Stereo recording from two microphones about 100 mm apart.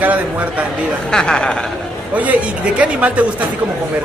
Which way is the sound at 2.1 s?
15° right (ahead or behind).